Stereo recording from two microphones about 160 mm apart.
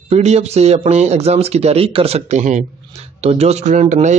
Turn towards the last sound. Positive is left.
turn(degrees=-50)  # may be behind; listen again after turning